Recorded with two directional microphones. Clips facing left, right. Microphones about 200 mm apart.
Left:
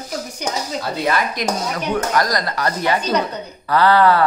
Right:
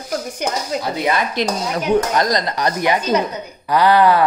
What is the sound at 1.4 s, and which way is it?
A woman's voice, 25° right (ahead or behind).